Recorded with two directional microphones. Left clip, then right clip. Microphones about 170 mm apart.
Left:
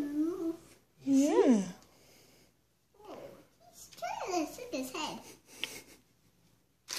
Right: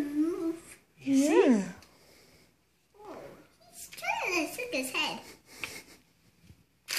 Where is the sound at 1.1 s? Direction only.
20° left (ahead or behind).